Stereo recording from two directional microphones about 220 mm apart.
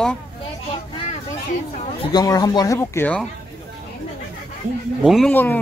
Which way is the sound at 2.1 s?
15° left (ahead or behind).